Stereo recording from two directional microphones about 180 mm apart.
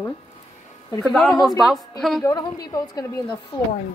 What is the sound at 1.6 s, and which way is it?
Speech, centre (ahead or behind).